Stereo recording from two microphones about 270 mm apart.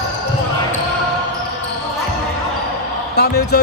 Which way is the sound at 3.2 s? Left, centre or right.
Left.